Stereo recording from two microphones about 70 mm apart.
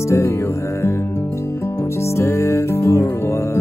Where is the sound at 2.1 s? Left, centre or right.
Left.